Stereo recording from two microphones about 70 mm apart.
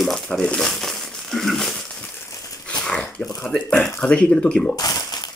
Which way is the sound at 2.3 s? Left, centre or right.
Left.